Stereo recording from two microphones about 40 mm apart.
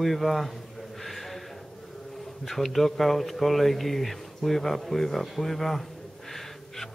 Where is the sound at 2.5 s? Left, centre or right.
Centre.